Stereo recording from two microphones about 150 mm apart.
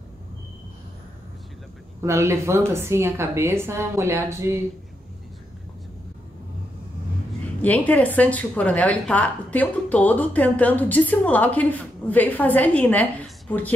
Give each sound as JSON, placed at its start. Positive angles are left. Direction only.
{"t": 2.0, "sound": "speech", "side_deg": -20}
{"t": 7.6, "sound": "a woman's voice", "side_deg": 10}